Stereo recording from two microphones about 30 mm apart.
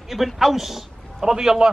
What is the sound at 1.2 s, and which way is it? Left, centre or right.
Speech, right.